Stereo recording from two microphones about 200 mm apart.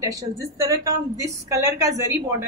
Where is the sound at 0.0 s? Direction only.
15° right (ahead or behind).